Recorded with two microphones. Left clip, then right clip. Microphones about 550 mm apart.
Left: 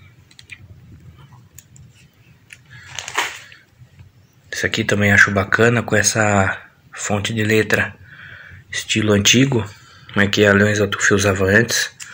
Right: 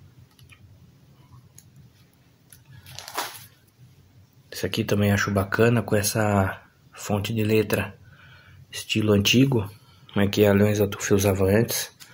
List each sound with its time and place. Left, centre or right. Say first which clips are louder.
4.5 s speech: left 7 dB; right